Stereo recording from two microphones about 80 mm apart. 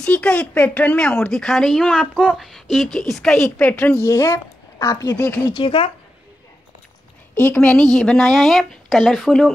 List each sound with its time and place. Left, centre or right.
0.0 s speech: centre
3.5 s a woman's voice: left
3.9 s a woman's voice: left
5.1 s a woman's voice: left
5.5 s speech: left
7.3 s a woman's voice: centre